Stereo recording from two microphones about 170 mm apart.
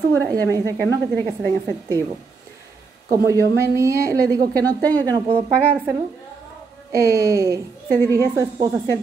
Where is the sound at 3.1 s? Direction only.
20° right (ahead or behind).